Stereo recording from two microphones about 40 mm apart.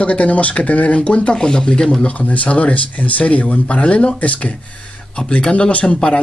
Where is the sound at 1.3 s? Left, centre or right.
Left.